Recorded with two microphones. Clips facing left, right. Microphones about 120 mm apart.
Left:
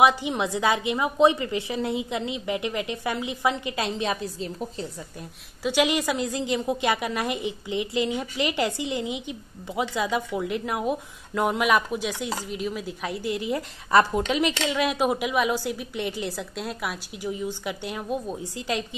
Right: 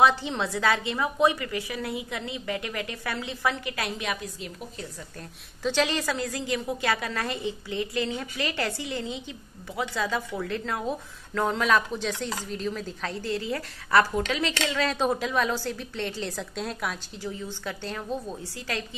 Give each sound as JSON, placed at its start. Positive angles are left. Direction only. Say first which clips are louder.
{"t": 0.0, "sound": "a woman's voice", "louder": "left 2 dB", "side_deg": 15}
{"t": 5.6, "sound": "a woman's voice", "louder": "left 3 dB", "side_deg": 15}